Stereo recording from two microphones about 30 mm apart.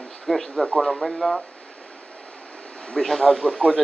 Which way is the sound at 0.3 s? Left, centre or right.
Centre.